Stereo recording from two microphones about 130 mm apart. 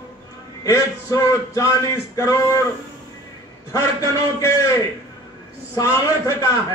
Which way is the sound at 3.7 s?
20° left (ahead or behind).